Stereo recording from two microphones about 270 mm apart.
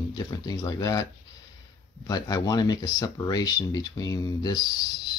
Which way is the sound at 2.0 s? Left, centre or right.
Centre.